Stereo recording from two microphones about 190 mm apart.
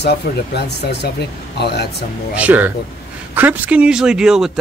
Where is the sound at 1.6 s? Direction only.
60° left (ahead or behind).